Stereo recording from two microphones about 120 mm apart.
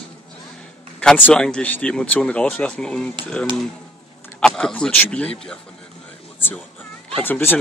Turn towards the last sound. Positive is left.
turn(degrees=15)  # may be behind; listen again after turning